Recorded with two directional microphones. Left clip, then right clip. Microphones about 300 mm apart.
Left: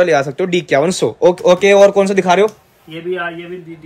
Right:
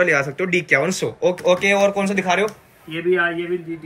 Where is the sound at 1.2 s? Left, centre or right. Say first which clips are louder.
Left 7 dB; left.